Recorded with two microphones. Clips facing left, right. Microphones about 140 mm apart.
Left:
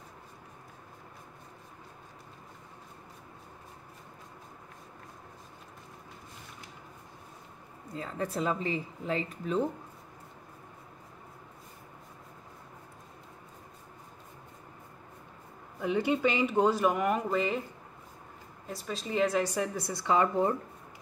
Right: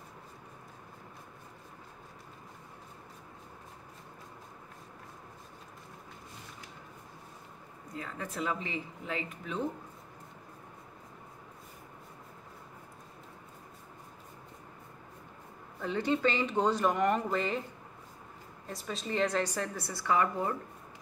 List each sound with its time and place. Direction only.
7.9 s speech: 30° left (ahead or behind)
15.8 s a woman's voice: 15° left (ahead or behind)
18.7 s a woman's voice: centre (ahead or behind); by 20.5 s 25° left (ahead or behind)